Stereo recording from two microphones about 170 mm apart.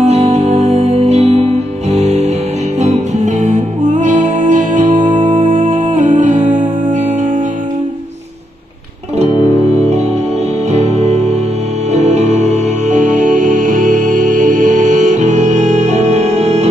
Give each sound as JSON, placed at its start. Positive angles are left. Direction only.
{"t": 0.0, "sound": "music", "side_deg": -40}
{"t": 6.4, "sound": "music", "side_deg": -10}
{"t": 10.7, "sound": "music", "side_deg": -40}